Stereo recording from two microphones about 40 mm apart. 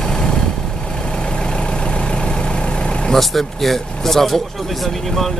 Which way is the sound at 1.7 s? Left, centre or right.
Left.